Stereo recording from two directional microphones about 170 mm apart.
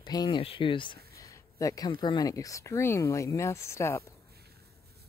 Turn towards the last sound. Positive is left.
turn(degrees=15)  # may be behind; listen again after turning